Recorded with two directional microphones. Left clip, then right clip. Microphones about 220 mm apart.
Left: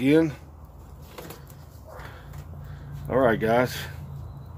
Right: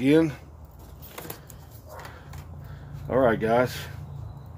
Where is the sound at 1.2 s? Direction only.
50° right (ahead or behind).